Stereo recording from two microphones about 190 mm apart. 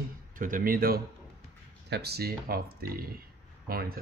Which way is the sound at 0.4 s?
45° right (ahead or behind).